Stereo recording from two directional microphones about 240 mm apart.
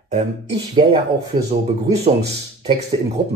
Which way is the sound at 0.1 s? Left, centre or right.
Right.